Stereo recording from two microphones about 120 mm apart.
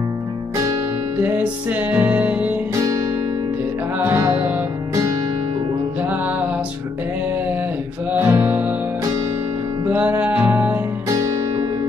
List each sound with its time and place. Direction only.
1.2 s music: 15° right (ahead or behind)
4.0 s music: 20° right (ahead or behind)
8.1 s music: 15° right (ahead or behind)
9.8 s music: 15° right (ahead or behind)